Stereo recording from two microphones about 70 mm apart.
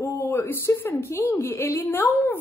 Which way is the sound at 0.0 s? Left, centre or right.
Left.